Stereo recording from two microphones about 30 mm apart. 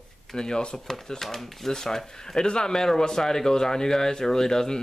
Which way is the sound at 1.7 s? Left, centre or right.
Centre.